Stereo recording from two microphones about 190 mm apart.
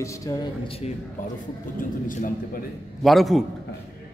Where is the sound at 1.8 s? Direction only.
45° left (ahead or behind).